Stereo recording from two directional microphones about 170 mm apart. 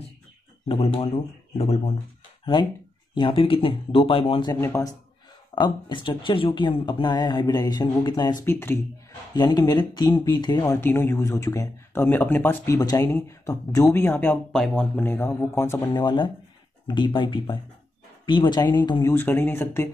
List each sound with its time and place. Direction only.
0.9 s speech: 40° left (ahead or behind)
4.5 s speech: 20° left (ahead or behind)
5.5 s speech: 30° left (ahead or behind)
8.5 s speech: 15° left (ahead or behind)
9.3 s speech: 25° left (ahead or behind)
10.8 s speech: 15° left (ahead or behind)
15.9 s speech: 25° left (ahead or behind)
19.1 s speech: 15° left (ahead or behind)